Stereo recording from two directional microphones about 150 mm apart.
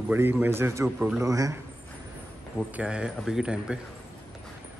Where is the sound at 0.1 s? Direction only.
15° right (ahead or behind).